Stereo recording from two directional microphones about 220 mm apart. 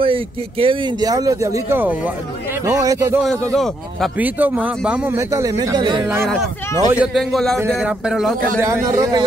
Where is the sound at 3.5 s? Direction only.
Centre (ahead or behind); by 6.1 s 20° right (ahead or behind).